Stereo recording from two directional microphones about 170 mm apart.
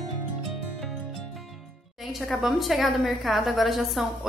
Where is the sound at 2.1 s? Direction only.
Centre (ahead or behind).